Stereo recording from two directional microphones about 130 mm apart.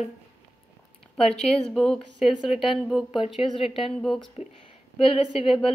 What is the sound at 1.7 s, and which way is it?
A woman's voice, 5° left (ahead or behind).